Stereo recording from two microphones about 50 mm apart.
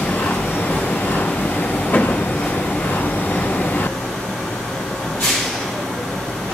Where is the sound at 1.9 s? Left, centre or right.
Left.